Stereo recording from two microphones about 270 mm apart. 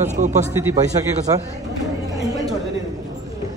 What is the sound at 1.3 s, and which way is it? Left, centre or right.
Chatter, centre.